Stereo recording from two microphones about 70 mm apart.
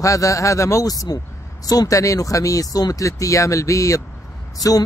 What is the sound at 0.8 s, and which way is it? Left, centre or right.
Speech, left.